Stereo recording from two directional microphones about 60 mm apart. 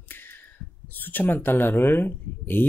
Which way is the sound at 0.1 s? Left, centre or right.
Left.